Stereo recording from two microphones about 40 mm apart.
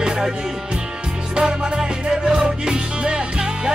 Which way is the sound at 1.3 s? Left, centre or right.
Centre.